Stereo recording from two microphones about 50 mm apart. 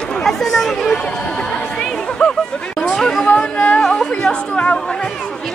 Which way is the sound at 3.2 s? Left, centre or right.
Left.